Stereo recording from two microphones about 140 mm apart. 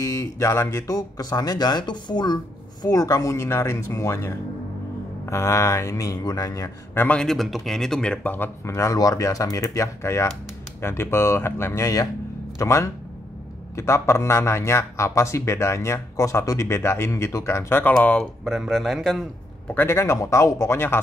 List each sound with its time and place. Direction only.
0.0 s a man's voice: 20° left (ahead or behind)
18.4 s speech: centre (ahead or behind)
19.7 s a man's voice: 15° left (ahead or behind)